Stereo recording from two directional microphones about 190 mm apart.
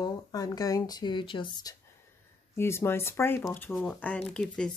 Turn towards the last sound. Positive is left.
turn(degrees=5)  # may be behind; listen again after turning